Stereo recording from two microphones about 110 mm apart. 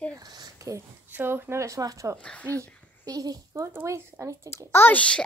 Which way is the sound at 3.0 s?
35° right (ahead or behind).